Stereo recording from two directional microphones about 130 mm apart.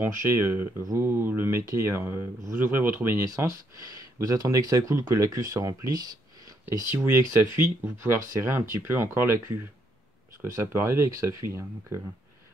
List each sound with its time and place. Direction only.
0.0 s speech: 20° right (ahead or behind)
10.4 s speech: 20° right (ahead or behind)